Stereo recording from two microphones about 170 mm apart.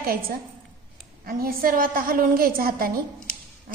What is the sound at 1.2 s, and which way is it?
A woman's voice, 60° right (ahead or behind).